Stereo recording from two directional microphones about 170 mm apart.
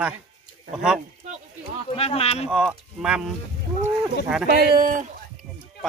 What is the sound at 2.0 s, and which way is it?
Speech, 35° left (ahead or behind).